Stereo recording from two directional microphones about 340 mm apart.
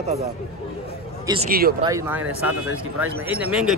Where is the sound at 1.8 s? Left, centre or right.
Centre.